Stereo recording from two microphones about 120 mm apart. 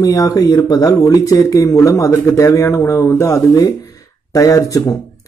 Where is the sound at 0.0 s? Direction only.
30° left (ahead or behind).